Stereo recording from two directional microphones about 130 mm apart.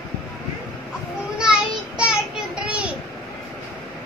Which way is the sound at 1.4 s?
5° right (ahead or behind).